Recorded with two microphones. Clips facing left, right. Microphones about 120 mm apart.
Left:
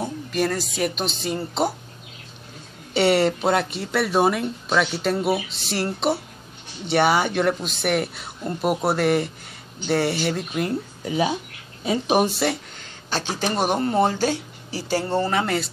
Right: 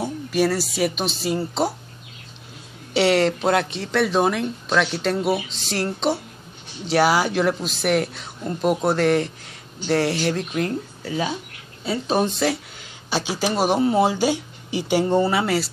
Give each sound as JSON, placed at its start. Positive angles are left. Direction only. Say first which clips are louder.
{"t": 0.0, "sound": "speech", "louder": "right 3 dB", "side_deg": -5}
{"t": 2.9, "sound": "speech", "louder": "even", "side_deg": 0}
{"t": 11.0, "sound": "speech", "louder": "left 5 dB", "side_deg": 20}
{"t": 13.1, "sound": "speech", "louder": "right 2 dB", "side_deg": -10}